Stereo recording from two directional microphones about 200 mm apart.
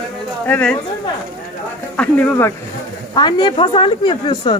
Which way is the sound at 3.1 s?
20° left (ahead or behind).